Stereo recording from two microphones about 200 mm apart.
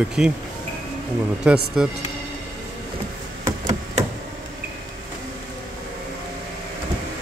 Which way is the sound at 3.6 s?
35° right (ahead or behind).